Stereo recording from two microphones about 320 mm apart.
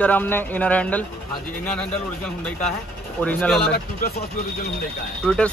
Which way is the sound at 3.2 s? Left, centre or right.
Centre.